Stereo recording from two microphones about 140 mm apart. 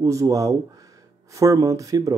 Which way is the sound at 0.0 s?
25° right (ahead or behind).